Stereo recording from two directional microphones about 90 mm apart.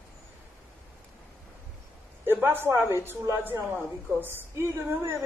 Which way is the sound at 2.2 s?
25° right (ahead or behind).